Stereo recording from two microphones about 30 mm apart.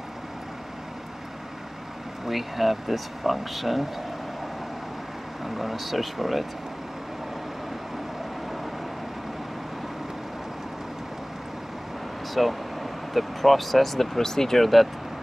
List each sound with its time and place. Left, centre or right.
2.2 s speech: centre
5.4 s speech: centre
12.4 s speech: centre
14.6 s speech: centre